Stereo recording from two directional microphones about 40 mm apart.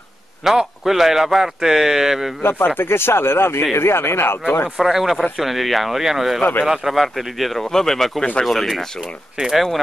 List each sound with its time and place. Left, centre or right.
0.4 s speech: centre
2.8 s speech: left
4.7 s speech: centre
7.6 s speech: centre
9.0 s speech: centre